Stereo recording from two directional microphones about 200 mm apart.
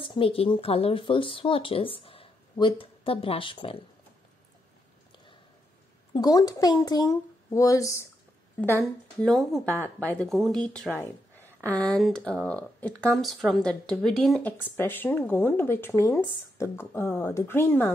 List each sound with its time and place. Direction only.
0.0 s speech: 25° left (ahead or behind)
6.1 s speech: 20° left (ahead or behind)
9.2 s speech: centre (ahead or behind)